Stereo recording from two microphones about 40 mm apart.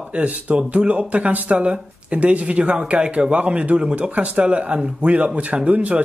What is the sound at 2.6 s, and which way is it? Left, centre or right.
Speech, right.